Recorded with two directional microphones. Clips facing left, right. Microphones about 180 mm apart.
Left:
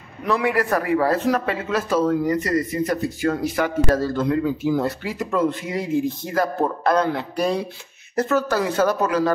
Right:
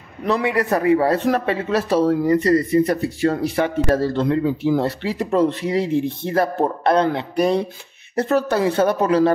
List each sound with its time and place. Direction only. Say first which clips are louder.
0.5 s speech: right 5 dB; 25° right (ahead or behind)